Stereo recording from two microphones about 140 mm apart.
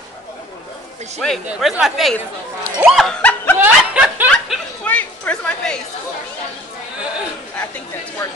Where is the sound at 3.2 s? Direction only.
10° left (ahead or behind).